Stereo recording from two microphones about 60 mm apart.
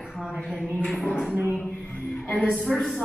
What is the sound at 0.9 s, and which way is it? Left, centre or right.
Speech, left.